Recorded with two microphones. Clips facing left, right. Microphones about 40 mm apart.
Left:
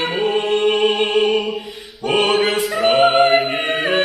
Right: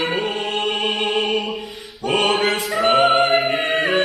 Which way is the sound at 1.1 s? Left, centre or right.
Centre.